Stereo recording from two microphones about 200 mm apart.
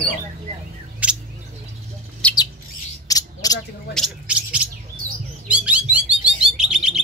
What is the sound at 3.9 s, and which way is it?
Speech, 5° right (ahead or behind).